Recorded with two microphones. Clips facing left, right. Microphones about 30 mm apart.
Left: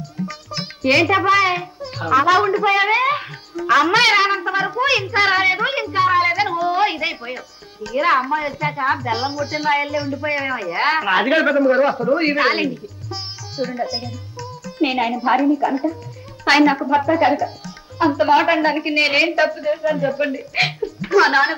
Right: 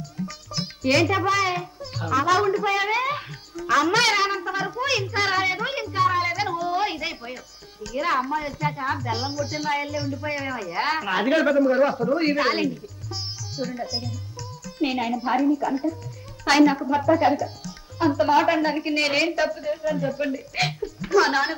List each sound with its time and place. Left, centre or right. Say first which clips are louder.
0.0 s a child's voice: left 5 dB; left